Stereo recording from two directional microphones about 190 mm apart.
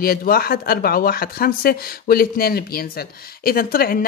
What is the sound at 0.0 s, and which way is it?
Speech, 50° left (ahead or behind).